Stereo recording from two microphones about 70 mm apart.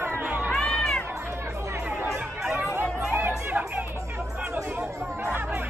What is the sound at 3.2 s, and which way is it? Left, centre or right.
Chatter, right.